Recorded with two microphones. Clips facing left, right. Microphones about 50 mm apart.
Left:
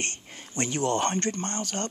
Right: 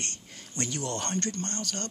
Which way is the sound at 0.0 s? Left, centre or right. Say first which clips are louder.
Left 5 dB; left.